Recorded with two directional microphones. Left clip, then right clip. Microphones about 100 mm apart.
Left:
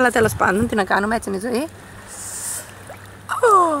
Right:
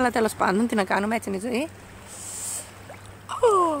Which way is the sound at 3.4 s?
20° left (ahead or behind).